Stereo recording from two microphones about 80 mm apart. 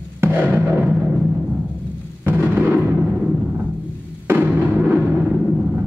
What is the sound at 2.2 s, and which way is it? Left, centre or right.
Music, right.